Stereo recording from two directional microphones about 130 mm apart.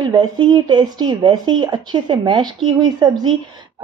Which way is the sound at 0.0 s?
35° right (ahead or behind).